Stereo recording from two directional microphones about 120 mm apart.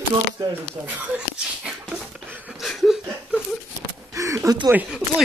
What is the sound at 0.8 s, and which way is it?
Dog, 10° right (ahead or behind).